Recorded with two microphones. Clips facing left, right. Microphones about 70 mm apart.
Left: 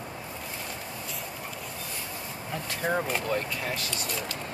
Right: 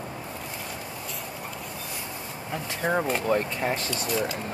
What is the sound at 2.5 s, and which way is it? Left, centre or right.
Speech, centre.